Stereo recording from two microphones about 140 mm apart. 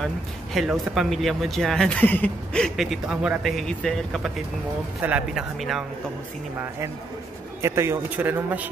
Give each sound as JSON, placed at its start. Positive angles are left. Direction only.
{"t": 0.0, "sound": "speech", "side_deg": 0}
{"t": 5.0, "sound": "speech", "side_deg": -10}
{"t": 7.6, "sound": "speech", "side_deg": -20}